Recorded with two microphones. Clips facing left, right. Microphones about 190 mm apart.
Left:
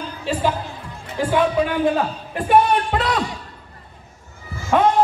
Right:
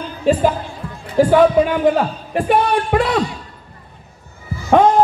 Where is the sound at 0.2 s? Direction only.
45° right (ahead or behind).